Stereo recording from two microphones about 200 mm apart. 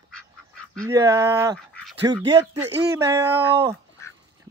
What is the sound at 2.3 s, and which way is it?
Speech, 20° right (ahead or behind).